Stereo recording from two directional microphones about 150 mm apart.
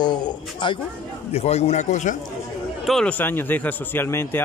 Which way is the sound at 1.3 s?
45° left (ahead or behind).